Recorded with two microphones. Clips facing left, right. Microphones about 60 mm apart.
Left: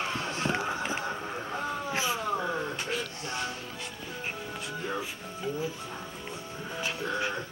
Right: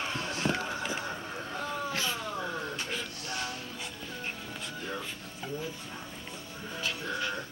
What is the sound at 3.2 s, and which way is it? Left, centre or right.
Music, left.